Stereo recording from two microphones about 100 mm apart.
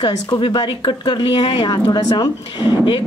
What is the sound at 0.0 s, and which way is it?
Speech, 50° left (ahead or behind).